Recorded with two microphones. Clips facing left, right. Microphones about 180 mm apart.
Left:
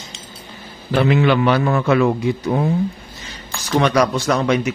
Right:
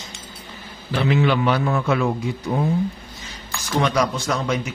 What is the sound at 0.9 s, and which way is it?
A man's voice, 65° left (ahead or behind).